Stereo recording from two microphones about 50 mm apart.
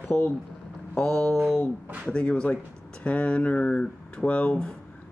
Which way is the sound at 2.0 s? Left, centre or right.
Left.